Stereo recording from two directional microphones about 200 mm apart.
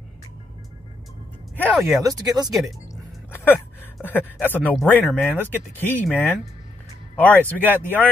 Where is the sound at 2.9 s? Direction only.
10° left (ahead or behind).